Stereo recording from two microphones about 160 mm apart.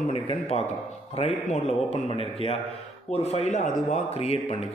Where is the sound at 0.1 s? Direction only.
35° left (ahead or behind).